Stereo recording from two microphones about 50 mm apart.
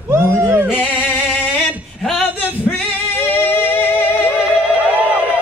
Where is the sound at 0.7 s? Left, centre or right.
Left.